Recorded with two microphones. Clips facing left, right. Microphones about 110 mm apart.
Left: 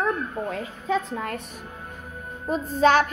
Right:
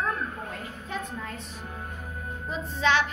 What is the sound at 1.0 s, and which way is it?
Speech, 70° left (ahead or behind).